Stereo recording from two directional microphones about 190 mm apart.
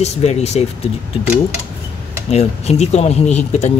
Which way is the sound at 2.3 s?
35° left (ahead or behind).